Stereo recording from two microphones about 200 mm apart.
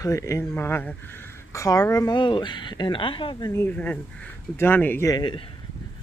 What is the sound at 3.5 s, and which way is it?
Speech, 10° left (ahead or behind).